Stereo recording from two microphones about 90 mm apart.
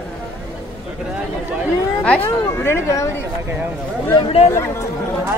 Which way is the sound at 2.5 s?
30° left (ahead or behind).